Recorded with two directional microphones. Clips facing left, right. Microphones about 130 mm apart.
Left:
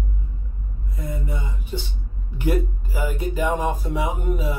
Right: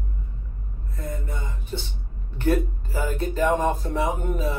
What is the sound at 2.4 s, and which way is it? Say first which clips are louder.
Speech: right 1 dB; 10° left (ahead or behind).